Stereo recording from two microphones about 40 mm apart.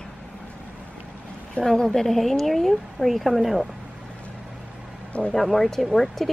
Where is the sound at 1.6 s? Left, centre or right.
Centre.